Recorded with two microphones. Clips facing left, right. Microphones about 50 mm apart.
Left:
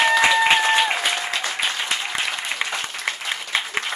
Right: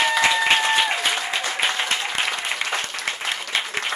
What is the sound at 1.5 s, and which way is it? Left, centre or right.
Applause, right.